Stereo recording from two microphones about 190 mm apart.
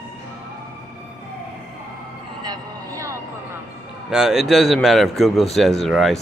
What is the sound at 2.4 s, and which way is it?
Vehicle, 20° right (ahead or behind).